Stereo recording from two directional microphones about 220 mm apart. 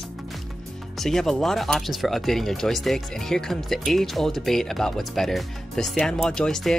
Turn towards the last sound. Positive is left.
turn(degrees=0)  # may be behind; listen again after turning